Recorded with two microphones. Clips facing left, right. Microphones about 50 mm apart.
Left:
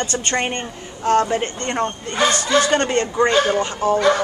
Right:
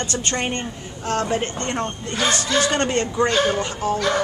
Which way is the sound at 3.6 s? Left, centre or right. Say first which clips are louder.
Left 4 dB; centre.